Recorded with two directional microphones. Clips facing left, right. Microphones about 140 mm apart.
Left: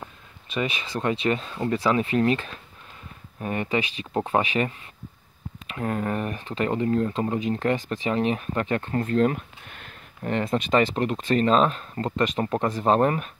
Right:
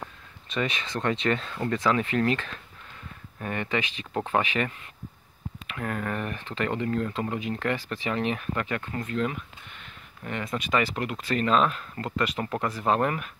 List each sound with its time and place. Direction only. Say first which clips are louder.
0.5 s speech: left 1 dB; 10° left (ahead or behind); by 13.3 s 30° left (ahead or behind)